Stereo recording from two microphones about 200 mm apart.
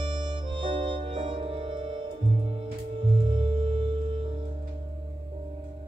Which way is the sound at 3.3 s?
25° right (ahead or behind).